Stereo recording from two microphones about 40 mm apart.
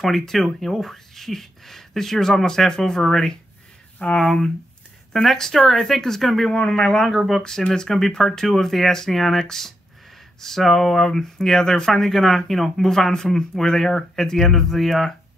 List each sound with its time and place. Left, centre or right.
0.0 s speech: centre
6.8 s speech: centre
7.1 s speech: centre
7.4 s speech: centre